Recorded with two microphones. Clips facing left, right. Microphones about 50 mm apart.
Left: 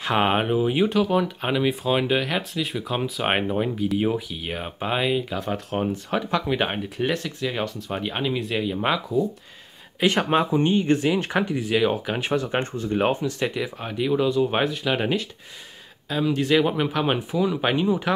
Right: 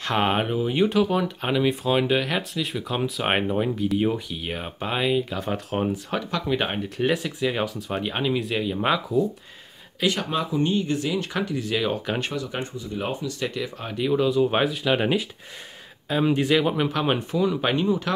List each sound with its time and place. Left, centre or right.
0.0 s speech: centre
0.8 s speech: centre
6.3 s speech: centre
10.1 s speech: left; by 12.3 s centre
12.3 s speech: left
13.5 s speech: centre
16.4 s speech: centre